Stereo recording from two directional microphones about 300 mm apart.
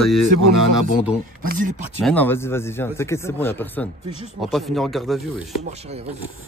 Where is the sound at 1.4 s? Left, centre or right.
Right.